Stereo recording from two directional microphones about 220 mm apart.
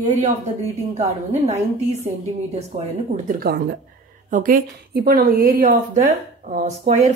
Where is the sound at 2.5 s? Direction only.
30° right (ahead or behind).